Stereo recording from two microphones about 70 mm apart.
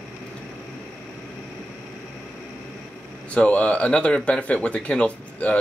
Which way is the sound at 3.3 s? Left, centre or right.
Centre.